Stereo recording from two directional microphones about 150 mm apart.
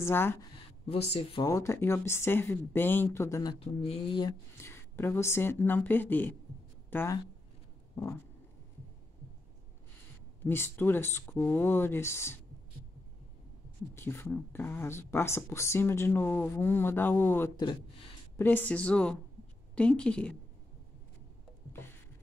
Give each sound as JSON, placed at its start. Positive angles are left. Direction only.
{"t": 0.0, "sound": "speech", "side_deg": 15}
{"t": 0.8, "sound": "speech", "side_deg": 45}
{"t": 1.4, "sound": "speech", "side_deg": 20}
{"t": 3.5, "sound": "speech", "side_deg": 40}
{"t": 4.6, "sound": "speech", "side_deg": 15}
{"t": 7.9, "sound": "vehicle", "side_deg": 20}
{"t": 10.4, "sound": "speech", "side_deg": 15}
{"t": 13.9, "sound": "speech", "side_deg": 15}